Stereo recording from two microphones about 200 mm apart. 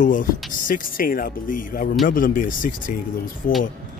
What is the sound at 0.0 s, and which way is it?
Speech, 40° left (ahead or behind).